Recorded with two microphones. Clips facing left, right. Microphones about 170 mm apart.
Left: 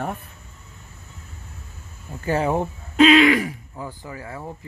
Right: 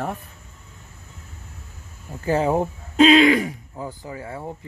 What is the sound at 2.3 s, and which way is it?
Speech, 30° right (ahead or behind).